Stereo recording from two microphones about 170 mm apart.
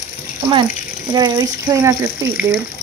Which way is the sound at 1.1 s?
20° right (ahead or behind).